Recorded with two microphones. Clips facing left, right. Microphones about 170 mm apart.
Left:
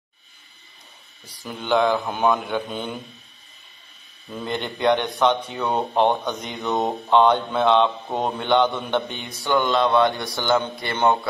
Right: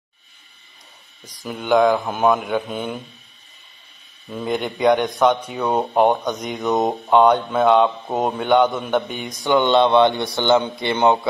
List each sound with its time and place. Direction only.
1.2 s speech: 10° right (ahead or behind)
4.3 s speech: 10° right (ahead or behind)
9.4 s a man's voice: 15° right (ahead or behind)